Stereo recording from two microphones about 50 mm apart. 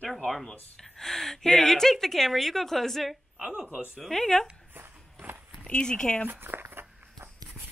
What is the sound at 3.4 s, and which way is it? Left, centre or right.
Speech, right.